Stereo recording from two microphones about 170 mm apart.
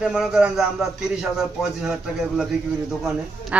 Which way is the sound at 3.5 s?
5° right (ahead or behind).